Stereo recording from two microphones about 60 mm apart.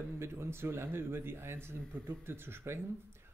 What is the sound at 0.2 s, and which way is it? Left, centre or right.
Speech, right.